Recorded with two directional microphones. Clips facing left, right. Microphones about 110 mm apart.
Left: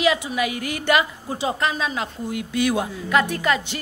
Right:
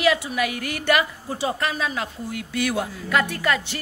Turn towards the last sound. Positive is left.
turn(degrees=20)  # may be behind; listen again after turning